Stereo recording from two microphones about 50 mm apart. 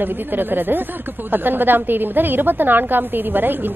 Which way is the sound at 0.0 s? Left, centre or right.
Right.